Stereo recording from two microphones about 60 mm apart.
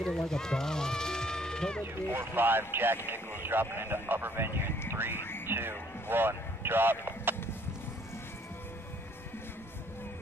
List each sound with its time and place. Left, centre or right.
0.0 s speech: centre
2.1 s a man's voice: right